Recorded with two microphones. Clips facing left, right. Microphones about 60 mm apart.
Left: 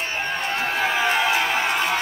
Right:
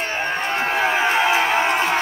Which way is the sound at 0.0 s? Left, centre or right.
Right.